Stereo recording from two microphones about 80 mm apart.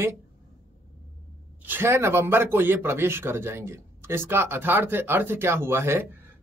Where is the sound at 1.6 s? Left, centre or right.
Right.